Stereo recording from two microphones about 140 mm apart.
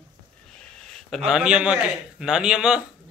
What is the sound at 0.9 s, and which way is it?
A man's voice, centre (ahead or behind).